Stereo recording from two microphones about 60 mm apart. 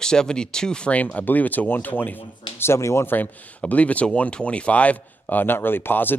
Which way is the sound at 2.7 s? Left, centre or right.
Left.